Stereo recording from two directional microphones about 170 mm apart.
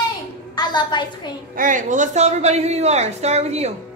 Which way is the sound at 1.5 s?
50° right (ahead or behind).